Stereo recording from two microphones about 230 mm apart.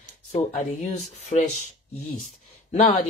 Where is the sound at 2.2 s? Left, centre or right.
Left.